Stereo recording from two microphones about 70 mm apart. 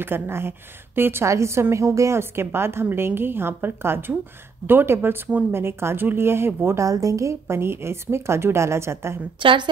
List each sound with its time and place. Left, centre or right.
0.0 s a woman's voice: right
1.2 s a woman's voice: right
6.8 s a woman's voice: right